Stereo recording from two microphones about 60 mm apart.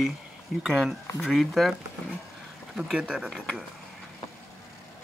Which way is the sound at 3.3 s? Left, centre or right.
Centre.